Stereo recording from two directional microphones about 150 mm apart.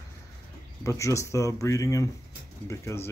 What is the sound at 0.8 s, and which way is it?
Speech, 20° left (ahead or behind).